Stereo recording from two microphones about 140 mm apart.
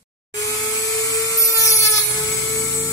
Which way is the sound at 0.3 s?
25° left (ahead or behind).